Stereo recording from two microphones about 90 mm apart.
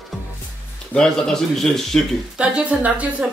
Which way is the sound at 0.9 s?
5° left (ahead or behind).